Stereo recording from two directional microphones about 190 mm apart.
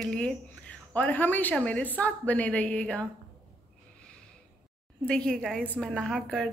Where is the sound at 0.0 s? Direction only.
5° left (ahead or behind).